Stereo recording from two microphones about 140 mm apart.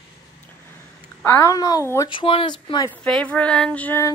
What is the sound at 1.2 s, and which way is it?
Speech, 20° left (ahead or behind).